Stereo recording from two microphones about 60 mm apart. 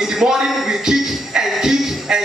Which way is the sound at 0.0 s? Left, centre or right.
Centre.